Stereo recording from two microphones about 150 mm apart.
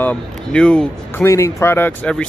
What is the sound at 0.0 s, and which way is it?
Speech, 10° left (ahead or behind).